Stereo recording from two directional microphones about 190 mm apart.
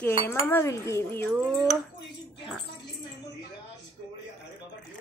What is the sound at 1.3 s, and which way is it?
Speech, 5° right (ahead or behind).